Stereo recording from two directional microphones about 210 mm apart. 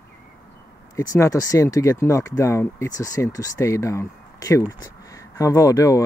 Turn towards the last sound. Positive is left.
turn(degrees=15)  # may be behind; listen again after turning